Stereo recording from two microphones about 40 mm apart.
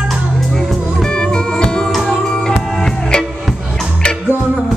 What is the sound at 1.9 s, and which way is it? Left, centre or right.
Music, centre.